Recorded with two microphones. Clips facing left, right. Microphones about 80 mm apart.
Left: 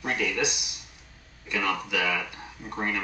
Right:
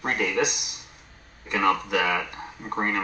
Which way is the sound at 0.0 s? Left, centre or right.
Right.